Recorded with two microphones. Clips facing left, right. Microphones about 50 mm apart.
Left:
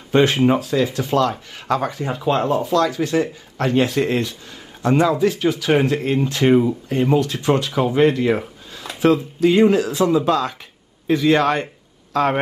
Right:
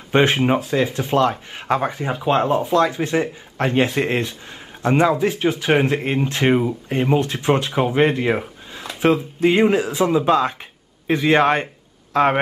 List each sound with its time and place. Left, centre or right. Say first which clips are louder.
0.1 s speech: left 1 dB; right